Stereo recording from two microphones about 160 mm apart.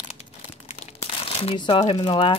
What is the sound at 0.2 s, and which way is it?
Crumpling, 45° left (ahead or behind).